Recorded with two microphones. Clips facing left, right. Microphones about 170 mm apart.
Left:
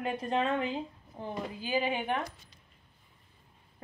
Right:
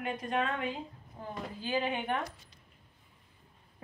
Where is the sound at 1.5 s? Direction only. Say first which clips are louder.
Left 1 dB; 10° left (ahead or behind).